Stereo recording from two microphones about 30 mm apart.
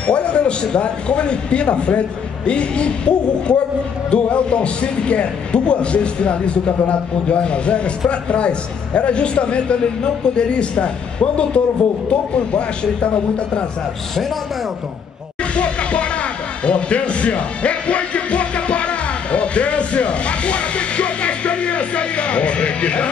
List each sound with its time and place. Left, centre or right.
0.0 s speech: left
15.5 s music: left